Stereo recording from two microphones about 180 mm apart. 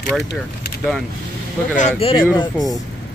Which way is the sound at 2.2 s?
20° left (ahead or behind).